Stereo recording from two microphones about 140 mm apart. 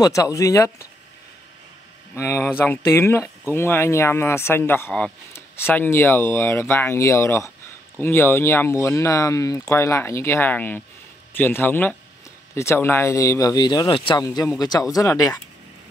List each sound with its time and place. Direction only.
0.0 s speech: 25° left (ahead or behind)
2.1 s speech: 20° left (ahead or behind)